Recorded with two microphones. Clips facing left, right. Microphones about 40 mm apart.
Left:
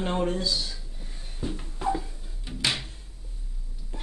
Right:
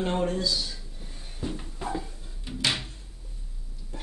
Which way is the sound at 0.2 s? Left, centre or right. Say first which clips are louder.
Even; left.